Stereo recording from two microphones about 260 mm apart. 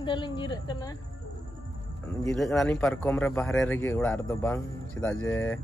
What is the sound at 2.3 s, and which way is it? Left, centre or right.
A man's voice, centre.